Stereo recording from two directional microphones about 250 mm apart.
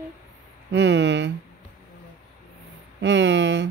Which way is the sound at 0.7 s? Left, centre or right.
Right.